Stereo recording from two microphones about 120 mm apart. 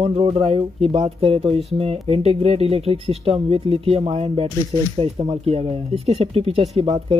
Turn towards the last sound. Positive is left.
turn(degrees=-55)  # may be behind; listen again after turning